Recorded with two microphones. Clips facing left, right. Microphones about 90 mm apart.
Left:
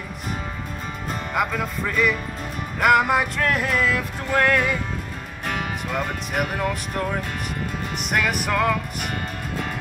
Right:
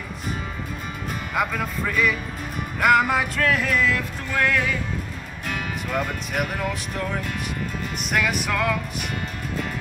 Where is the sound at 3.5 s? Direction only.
30° left (ahead or behind).